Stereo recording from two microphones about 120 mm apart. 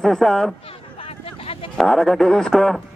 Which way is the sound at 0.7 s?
50° left (ahead or behind).